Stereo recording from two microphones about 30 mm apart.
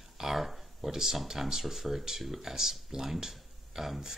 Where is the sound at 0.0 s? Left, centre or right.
Centre.